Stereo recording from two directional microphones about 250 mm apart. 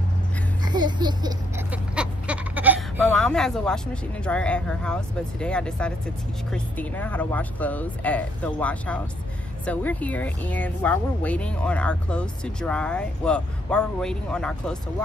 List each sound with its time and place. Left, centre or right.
0.7 s speech: centre
1.7 s a sound: centre
3.0 s speech: centre